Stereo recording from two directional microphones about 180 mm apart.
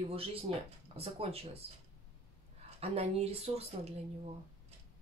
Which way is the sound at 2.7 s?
35° right (ahead or behind).